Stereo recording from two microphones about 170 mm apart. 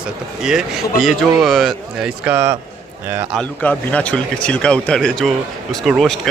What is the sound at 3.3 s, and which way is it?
A man's voice, 10° left (ahead or behind).